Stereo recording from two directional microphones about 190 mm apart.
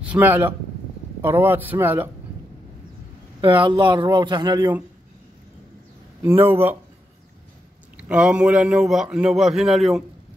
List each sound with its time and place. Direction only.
0.1 s a man's voice: 10° right (ahead or behind)
3.6 s speech: 25° right (ahead or behind)
6.2 s a man's voice: 10° right (ahead or behind)
8.0 s a man's voice: 5° right (ahead or behind)